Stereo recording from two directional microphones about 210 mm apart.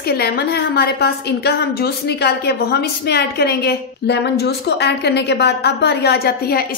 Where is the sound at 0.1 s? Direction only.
50° left (ahead or behind).